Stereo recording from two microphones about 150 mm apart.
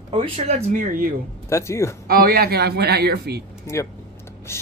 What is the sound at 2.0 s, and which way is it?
Speech, 85° right.